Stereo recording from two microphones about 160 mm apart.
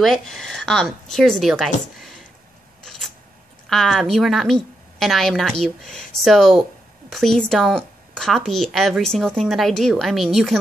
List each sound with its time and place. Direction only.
0.0 s a woman's voice: centre (ahead or behind)
2.8 s a sound: 5° left (ahead or behind)
3.6 s a woman's voice: centre (ahead or behind)